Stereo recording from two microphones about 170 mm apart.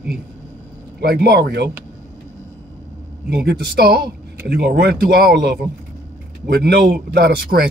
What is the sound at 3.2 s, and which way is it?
Speech, 70° right (ahead or behind).